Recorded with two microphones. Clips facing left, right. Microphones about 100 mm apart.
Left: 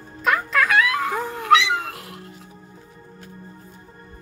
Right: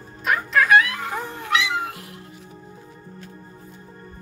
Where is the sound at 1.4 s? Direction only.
90° left.